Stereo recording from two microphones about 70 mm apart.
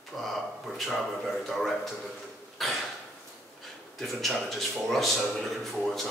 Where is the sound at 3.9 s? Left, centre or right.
Centre.